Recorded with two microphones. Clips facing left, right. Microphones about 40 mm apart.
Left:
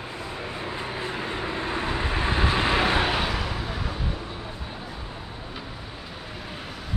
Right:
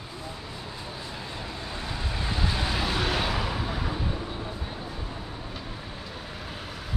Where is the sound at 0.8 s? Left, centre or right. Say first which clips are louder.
Left 7 dB; left.